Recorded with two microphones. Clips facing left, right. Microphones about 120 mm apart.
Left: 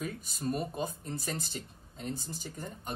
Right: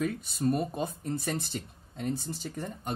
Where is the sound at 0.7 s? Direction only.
60° right (ahead or behind).